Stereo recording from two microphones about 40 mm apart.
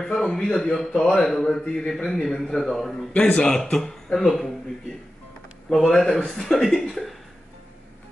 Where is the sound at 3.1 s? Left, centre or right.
Left.